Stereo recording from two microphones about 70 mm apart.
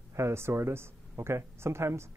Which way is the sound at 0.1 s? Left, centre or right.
Right.